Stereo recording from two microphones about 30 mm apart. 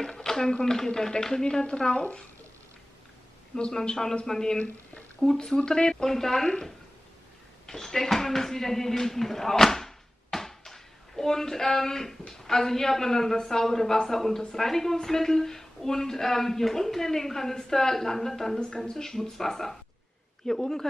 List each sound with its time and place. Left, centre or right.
0.2 s a sound: centre
0.7 s speech: left
2.0 s speech: left
3.8 s speech: left
5.2 s speech: centre
5.7 s speech: left
6.0 s speech: centre
7.6 s speech: centre